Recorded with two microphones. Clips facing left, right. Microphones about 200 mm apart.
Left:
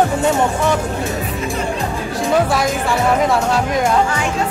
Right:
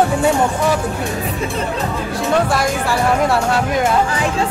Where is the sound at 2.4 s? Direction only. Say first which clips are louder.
Even; centre (ahead or behind).